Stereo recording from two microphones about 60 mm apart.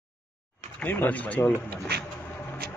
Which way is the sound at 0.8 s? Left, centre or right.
Left.